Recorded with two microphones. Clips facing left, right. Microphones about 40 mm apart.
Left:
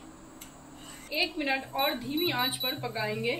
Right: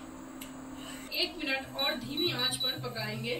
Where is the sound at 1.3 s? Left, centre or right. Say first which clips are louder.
Left 4 dB; centre.